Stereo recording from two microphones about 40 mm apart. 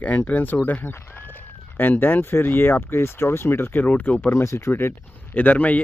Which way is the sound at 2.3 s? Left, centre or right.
Left.